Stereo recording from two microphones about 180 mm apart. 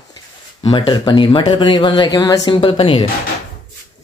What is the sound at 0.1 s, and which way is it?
Speech, 25° left (ahead or behind).